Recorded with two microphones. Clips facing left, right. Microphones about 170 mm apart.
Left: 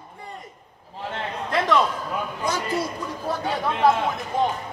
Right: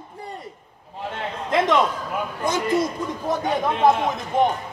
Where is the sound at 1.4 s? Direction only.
20° right (ahead or behind).